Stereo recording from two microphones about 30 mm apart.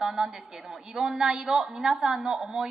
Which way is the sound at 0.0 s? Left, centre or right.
Centre.